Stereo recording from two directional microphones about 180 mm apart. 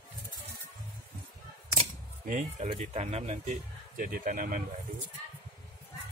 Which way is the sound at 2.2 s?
45° right (ahead or behind).